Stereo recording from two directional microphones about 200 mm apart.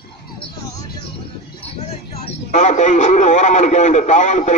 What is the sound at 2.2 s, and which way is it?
A man's voice, 35° left (ahead or behind).